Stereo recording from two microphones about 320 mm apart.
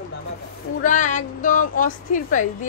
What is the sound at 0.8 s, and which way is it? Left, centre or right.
A woman's voice, left.